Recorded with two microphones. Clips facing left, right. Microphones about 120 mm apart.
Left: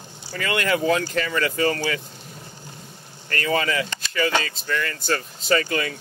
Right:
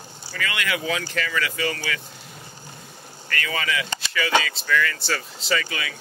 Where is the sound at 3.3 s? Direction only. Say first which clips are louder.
Left 4 dB; 35° left (ahead or behind).